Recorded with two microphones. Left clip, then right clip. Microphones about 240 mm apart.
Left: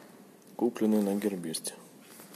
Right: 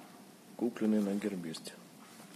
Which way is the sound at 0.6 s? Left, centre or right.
Centre.